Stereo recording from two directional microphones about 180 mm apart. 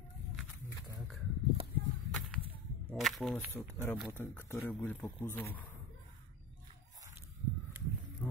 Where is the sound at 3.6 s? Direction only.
15° left (ahead or behind).